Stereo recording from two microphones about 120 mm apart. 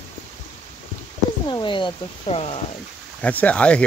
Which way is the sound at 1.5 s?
40° left (ahead or behind).